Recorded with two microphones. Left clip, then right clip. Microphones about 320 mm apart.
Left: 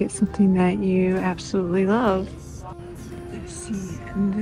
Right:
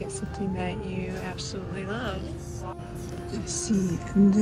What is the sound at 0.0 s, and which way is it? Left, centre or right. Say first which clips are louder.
Music: left 10 dB; left.